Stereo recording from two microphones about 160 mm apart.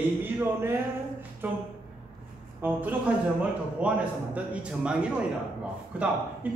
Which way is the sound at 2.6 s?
10° right (ahead or behind).